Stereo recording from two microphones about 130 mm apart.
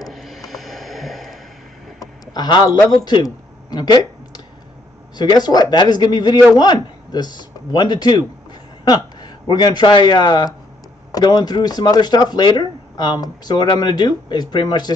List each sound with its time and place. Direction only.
0.1 s snort: centre (ahead or behind)
2.0 s a sound: 30° left (ahead or behind)
3.7 s speech: 30° left (ahead or behind)
5.1 s speech: 35° left (ahead or behind)